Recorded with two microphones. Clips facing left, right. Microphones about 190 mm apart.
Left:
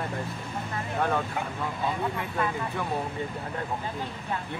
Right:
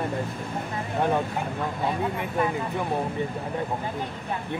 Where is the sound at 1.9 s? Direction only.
20° right (ahead or behind).